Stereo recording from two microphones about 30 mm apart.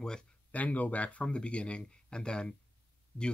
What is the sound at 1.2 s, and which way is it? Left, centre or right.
Speech, left.